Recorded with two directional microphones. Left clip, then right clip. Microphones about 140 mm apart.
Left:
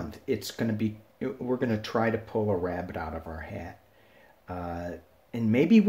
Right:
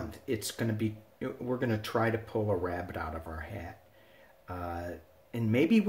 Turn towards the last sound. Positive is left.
turn(degrees=30)  # may be behind; listen again after turning